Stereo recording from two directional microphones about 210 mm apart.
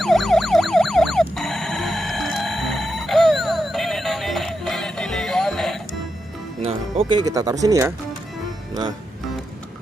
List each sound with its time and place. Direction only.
0.0 s police car: centre (ahead or behind)
6.6 s music: 25° right (ahead or behind)
7.6 s speech: 15° right (ahead or behind)